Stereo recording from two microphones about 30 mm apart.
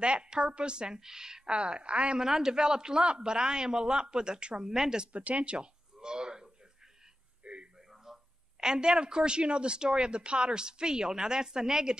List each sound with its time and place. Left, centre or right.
0.0 s speech: right
1.5 s a woman's voice: right
2.1 s speech: centre
4.6 s speech: centre
5.1 s speech: right
5.9 s a sound: right
7.4 s a sound: right
7.9 s a sound: centre
8.5 s speech: right